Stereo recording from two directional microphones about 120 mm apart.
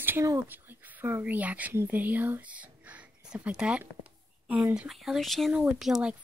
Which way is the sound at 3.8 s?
10° right (ahead or behind).